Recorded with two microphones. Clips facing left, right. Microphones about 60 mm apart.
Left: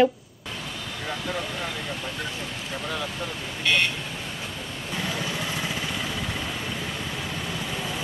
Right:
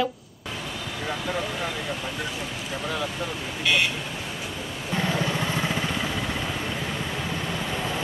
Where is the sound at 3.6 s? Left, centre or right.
Centre.